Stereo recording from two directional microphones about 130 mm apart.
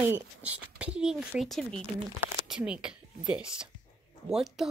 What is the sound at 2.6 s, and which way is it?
Speech, 5° right (ahead or behind).